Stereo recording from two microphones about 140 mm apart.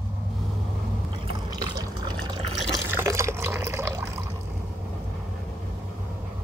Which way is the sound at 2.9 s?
20° right (ahead or behind).